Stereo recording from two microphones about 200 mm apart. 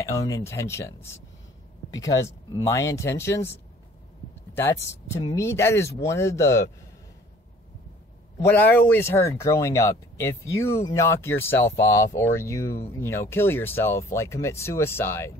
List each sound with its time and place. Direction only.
0.0 s speech: 15° left (ahead or behind)
5.2 s speech: 15° left (ahead or behind)
8.4 s speech: 10° left (ahead or behind)